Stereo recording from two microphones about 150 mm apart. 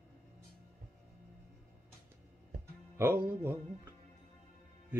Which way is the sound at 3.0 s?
15° right (ahead or behind).